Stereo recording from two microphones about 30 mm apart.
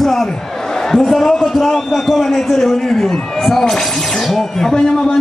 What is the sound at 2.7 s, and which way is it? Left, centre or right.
A man's voice, centre.